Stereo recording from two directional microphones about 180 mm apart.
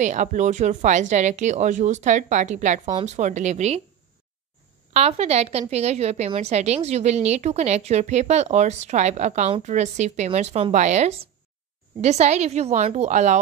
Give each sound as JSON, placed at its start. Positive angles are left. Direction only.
{"t": 0.0, "sound": "speech", "side_deg": -40}
{"t": 4.9, "sound": "speech", "side_deg": -35}